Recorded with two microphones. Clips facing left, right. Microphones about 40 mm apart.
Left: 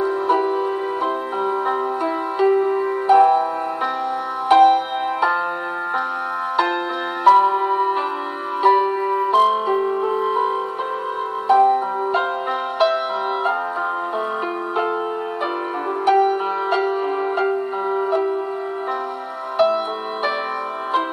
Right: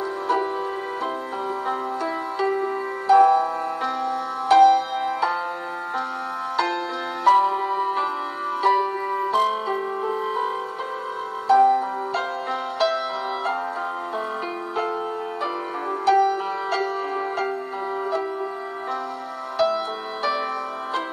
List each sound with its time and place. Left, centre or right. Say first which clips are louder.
2.3 s music: left 8 dB; left
6.5 s music: left 4 dB; left
16.1 s music: left 2 dB; left
19.6 s music: left 4 dB; left